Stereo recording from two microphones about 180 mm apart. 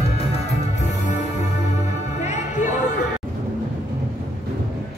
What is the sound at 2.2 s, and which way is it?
Music, 40° left (ahead or behind).